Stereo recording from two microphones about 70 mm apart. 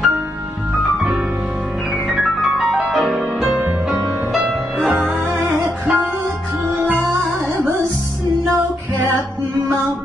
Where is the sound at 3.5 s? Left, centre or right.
Centre.